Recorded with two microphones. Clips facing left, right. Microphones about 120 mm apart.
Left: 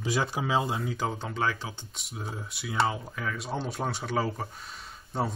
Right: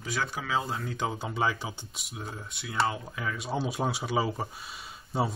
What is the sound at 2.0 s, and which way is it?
Speech, centre (ahead or behind).